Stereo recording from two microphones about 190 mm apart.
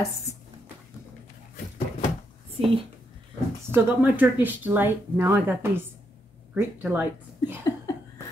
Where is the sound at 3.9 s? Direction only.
10° right (ahead or behind).